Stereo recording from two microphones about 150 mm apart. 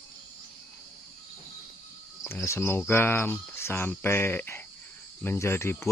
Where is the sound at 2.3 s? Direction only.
15° left (ahead or behind).